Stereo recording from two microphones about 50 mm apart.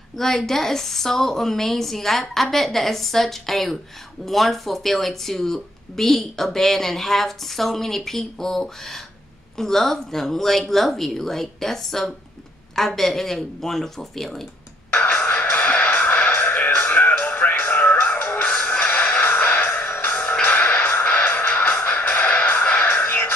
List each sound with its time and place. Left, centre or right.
0.2 s speech: centre
14.9 s music: left
15.5 s music: left